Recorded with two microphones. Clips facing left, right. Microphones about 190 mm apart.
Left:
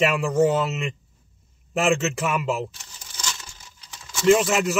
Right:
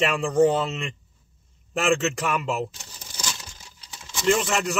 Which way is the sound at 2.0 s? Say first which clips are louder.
Left 1 dB; 5° left (ahead or behind).